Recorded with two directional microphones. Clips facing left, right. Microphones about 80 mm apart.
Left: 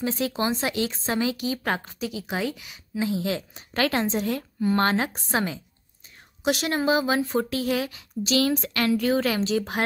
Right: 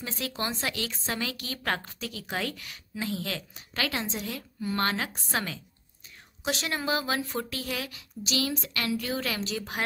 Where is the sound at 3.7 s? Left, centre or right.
Left.